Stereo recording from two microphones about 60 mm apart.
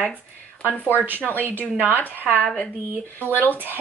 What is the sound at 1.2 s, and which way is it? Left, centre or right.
A woman's voice, left.